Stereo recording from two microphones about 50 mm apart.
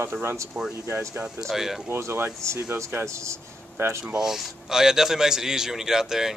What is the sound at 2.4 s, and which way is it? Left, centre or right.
Speech, right.